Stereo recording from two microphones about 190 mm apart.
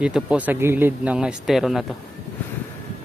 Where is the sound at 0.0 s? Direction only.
5° right (ahead or behind).